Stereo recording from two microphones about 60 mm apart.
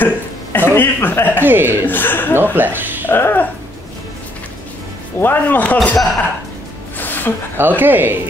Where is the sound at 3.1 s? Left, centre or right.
Left.